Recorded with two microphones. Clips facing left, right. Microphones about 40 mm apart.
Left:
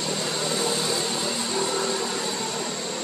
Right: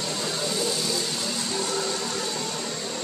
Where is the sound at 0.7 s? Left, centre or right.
Left.